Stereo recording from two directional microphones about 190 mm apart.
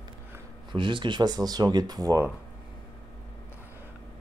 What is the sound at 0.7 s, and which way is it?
Speech, 25° right (ahead or behind).